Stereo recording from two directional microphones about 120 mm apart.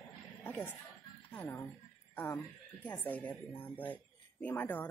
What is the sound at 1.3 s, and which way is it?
Speech, 15° left (ahead or behind).